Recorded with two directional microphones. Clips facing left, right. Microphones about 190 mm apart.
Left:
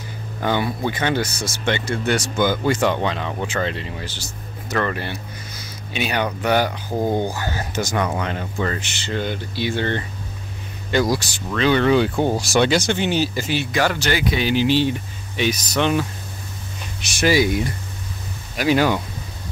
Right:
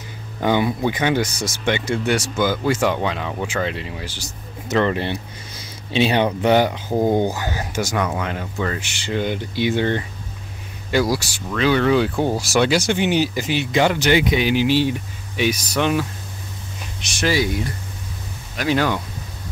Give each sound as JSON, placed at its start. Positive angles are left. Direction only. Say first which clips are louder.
{"t": 0.4, "sound": "speech", "louder": "right 3 dB", "side_deg": -15}
{"t": 4.6, "sound": "speech", "louder": "right 4 dB", "side_deg": -20}
{"t": 17.0, "sound": "speech", "louder": "left 3 dB", "side_deg": 10}
{"t": 18.6, "sound": "speech", "louder": "left 2 dB", "side_deg": 10}